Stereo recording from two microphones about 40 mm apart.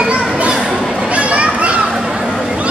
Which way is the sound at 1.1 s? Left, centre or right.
Right.